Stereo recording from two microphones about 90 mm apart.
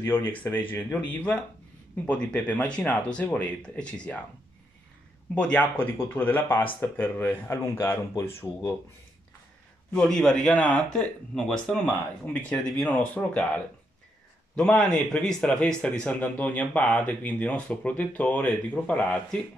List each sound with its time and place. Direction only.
0.0 s speech: 25° left (ahead or behind)
5.3 s speech: 15° left (ahead or behind)
10.0 s speech: 10° left (ahead or behind)
14.5 s speech: 10° left (ahead or behind)